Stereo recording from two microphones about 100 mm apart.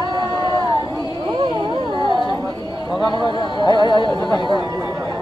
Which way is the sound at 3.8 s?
50° left (ahead or behind).